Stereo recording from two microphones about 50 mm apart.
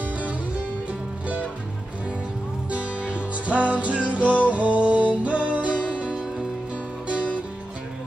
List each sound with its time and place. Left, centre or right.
2.7 s music: right